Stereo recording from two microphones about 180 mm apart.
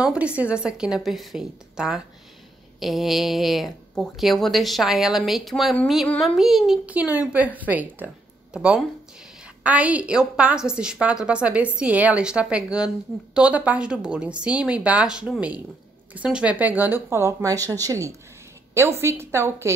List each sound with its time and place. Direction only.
0.0 s speech: 5° right (ahead or behind)